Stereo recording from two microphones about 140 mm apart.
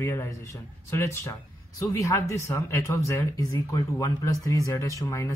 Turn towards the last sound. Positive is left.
turn(degrees=25)  # may be behind; listen again after turning